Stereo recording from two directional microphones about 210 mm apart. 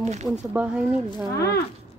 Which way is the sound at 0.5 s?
5° right (ahead or behind).